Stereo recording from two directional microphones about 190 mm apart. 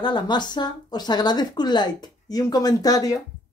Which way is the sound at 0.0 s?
25° left (ahead or behind).